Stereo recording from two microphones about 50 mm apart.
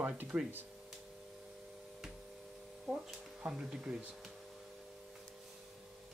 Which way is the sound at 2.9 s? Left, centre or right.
Centre.